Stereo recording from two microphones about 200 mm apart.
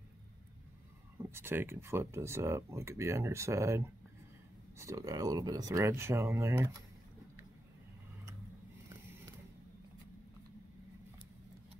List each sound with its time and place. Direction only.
1.1 s speech: 10° right (ahead or behind)